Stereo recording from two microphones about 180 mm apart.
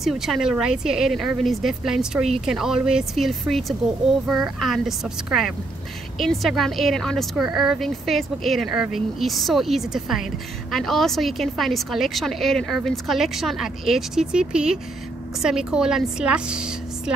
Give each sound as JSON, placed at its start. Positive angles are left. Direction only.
{"t": 0.0, "sound": "a woman's voice", "side_deg": 0}